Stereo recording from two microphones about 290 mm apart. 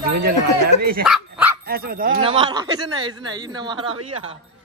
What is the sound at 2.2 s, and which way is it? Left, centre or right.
A woman's voice, centre.